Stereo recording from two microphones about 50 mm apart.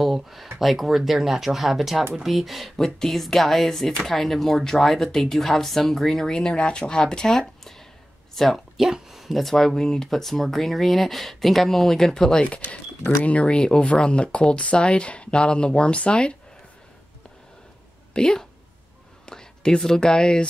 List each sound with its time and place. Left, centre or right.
0.0 s speech: centre
8.7 s speech: centre
12.4 s speech: left
18.1 s speech: centre